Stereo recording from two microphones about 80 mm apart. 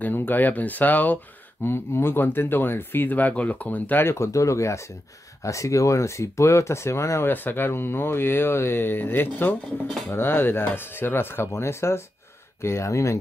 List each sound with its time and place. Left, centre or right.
0.0 s speech: left
4.1 s speech: left